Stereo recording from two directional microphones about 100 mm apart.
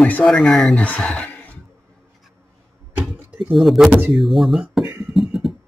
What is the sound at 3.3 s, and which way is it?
Speech, 5° right (ahead or behind).